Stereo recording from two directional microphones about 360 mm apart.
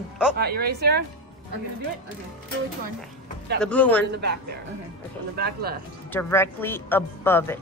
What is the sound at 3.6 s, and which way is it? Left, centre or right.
Speech, centre.